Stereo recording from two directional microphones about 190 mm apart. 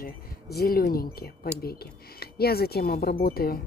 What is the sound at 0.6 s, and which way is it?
Speech, 50° left (ahead or behind).